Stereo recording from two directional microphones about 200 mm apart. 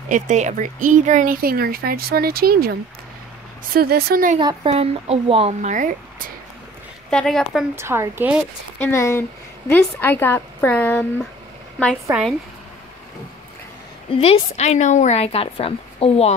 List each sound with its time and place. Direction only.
0.1 s speech: 35° right (ahead or behind)
4.6 s speech: 30° right (ahead or behind)
7.1 s speech: 5° left (ahead or behind)
7.7 s a woman's voice: 15° right (ahead or behind)
8.7 s a woman's voice: 10° left (ahead or behind)
14.2 s a woman's voice: 30° left (ahead or behind)